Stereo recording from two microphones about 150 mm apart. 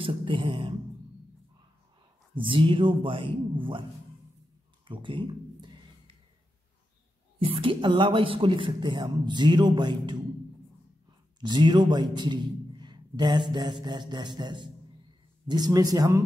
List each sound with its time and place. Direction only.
0.0 s music: 35° right (ahead or behind)
2.3 s speech: 35° right (ahead or behind)
4.8 s speech: 35° right (ahead or behind)
7.3 s speech: 40° right (ahead or behind)
11.3 s a man's voice: 30° right (ahead or behind)